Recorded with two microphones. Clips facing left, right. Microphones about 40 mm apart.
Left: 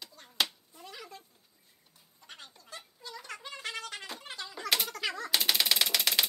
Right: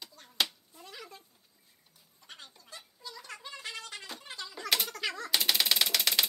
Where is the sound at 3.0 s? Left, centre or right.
Left.